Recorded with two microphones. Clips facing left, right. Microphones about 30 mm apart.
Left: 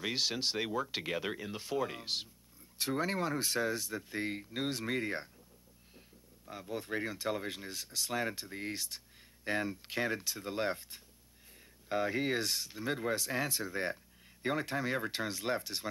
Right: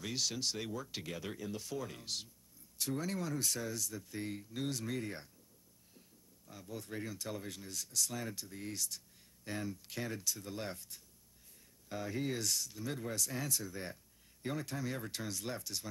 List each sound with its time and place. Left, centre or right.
0.0 s speech: left